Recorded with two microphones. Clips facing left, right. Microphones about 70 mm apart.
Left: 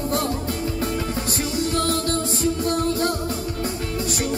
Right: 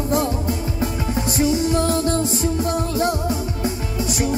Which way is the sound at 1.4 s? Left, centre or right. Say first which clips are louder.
Right 6 dB; right.